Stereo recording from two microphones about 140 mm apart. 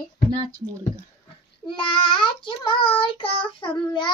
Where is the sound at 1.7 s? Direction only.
35° left (ahead or behind).